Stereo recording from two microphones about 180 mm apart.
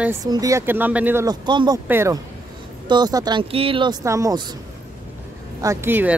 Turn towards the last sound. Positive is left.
turn(degrees=-10)  # may be behind; listen again after turning